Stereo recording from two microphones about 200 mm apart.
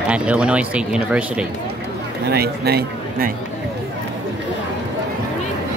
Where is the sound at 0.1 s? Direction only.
5° right (ahead or behind).